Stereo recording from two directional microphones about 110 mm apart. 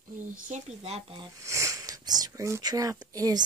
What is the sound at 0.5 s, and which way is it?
Speech, 75° right (ahead or behind).